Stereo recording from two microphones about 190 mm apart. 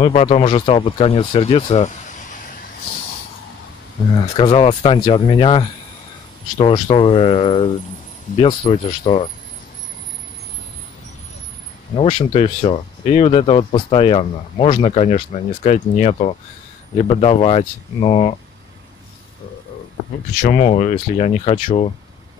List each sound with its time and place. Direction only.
0.0 s speech: 35° left (ahead or behind)
4.4 s speech: 25° left (ahead or behind)
11.9 s speech: 25° left (ahead or behind)
20.4 s speech: 35° left (ahead or behind)